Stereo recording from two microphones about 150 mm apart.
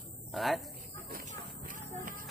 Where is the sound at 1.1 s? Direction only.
65° right (ahead or behind).